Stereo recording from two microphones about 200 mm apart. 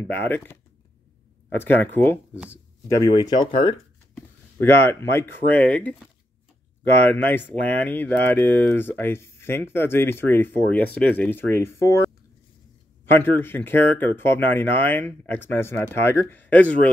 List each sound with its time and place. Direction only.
0.0 s speech: 10° left (ahead or behind)
2.3 s speech: 5° right (ahead or behind)
3.0 s speech: 20° left (ahead or behind)
4.1 s speech: 10° left (ahead or behind)